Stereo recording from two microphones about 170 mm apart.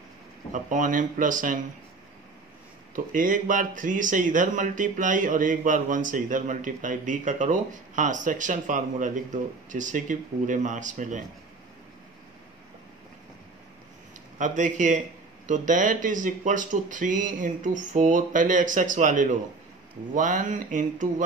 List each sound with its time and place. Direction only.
0.5 s speech: 50° right (ahead or behind)
3.1 s speech: 50° right (ahead or behind)
14.4 s speech: 45° right (ahead or behind)